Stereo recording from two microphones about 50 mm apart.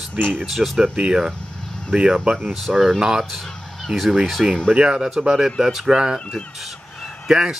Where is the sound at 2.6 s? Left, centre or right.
Centre.